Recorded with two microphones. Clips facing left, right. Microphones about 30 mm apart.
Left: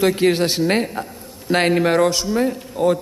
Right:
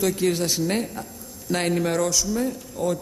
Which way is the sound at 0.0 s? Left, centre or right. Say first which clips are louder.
Left 6 dB; left.